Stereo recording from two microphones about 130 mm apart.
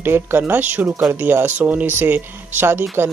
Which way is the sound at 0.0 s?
15° right (ahead or behind).